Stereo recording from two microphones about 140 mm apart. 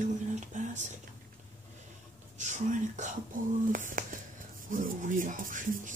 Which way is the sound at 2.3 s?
60° right (ahead or behind).